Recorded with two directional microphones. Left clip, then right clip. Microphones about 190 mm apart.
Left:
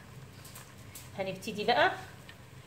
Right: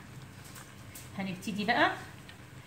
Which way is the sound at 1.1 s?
40° left (ahead or behind).